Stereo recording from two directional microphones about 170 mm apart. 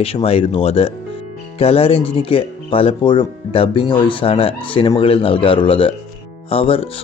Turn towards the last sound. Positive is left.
turn(degrees=35)  # may be behind; listen again after turning